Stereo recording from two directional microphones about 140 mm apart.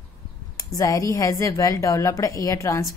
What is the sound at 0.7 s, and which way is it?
A woman's voice, 25° left (ahead or behind).